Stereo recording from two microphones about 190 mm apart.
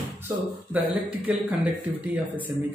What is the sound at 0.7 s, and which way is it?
Speech, 5° right (ahead or behind).